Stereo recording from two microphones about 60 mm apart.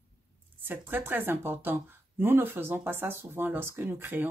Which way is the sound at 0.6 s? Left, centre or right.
Right.